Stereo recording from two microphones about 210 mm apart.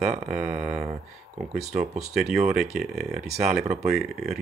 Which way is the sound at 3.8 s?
Centre (ahead or behind).